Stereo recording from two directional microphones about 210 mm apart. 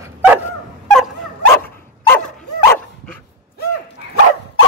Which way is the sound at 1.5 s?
10° left (ahead or behind).